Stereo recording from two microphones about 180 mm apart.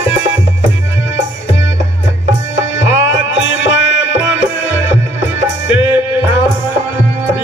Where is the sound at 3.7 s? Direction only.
85° left.